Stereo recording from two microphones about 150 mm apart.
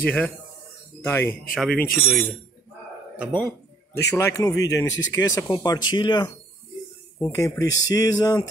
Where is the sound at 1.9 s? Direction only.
Centre (ahead or behind).